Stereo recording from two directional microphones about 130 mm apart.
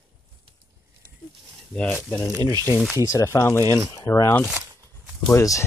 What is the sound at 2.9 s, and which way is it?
Speech, 25° left (ahead or behind).